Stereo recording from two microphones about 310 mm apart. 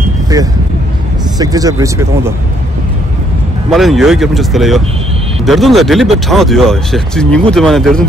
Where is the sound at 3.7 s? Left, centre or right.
Centre.